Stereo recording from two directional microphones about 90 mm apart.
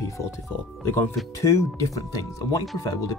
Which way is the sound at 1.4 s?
35° left (ahead or behind).